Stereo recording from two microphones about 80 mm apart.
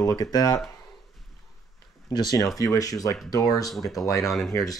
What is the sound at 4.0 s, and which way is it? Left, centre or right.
Speech, left.